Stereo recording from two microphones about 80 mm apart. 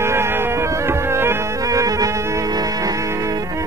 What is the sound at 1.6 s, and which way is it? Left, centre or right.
Music, right.